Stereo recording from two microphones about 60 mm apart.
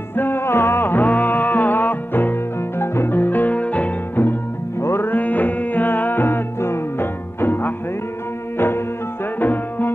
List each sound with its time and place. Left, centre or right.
0.1 s music: left
2.8 s music: left
4.8 s music: left
5.1 s music: left